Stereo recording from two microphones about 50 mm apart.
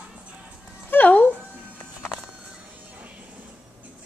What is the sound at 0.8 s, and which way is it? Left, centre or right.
Music, left.